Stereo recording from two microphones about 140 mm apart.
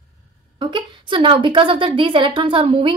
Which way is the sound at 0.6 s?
35° right (ahead or behind).